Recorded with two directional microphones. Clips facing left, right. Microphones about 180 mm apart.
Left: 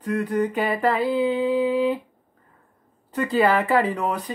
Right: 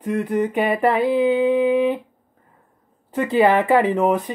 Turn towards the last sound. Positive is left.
turn(degrees=-20)  # may be behind; listen again after turning